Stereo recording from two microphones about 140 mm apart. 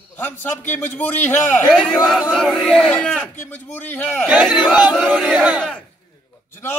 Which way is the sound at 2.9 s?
5° left (ahead or behind).